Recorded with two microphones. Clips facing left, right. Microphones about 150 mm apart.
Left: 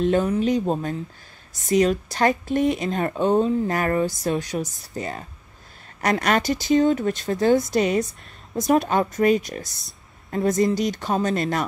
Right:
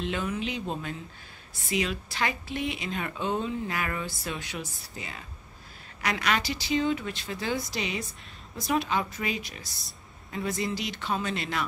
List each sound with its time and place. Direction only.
0.0 s speech: 40° left (ahead or behind)